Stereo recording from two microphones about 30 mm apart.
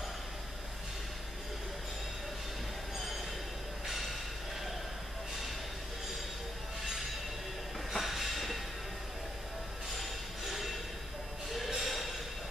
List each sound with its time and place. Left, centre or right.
3.8 s train: centre
7.9 s train: centre
9.9 s a sound: centre